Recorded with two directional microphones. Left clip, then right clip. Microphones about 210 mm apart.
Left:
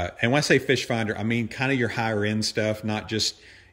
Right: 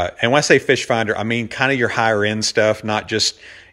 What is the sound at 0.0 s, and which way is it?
Speech, centre (ahead or behind).